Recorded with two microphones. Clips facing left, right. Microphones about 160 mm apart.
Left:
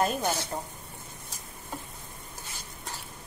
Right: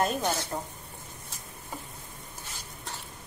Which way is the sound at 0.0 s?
Centre (ahead or behind).